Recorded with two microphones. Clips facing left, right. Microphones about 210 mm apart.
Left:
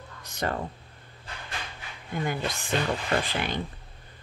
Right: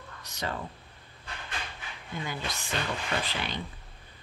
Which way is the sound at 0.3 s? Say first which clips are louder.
Left 5 dB; 50° left (ahead or behind).